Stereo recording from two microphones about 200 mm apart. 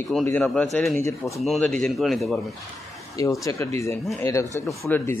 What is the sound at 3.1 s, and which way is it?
A man's voice, 15° left (ahead or behind).